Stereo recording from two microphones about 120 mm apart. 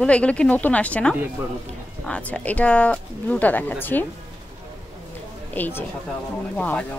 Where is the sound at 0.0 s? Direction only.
10° left (ahead or behind).